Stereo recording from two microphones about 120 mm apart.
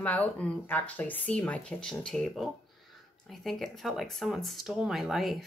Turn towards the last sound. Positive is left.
turn(degrees=0)  # may be behind; listen again after turning